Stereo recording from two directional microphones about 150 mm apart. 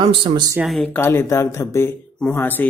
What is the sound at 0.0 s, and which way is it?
Speech, 30° right (ahead or behind).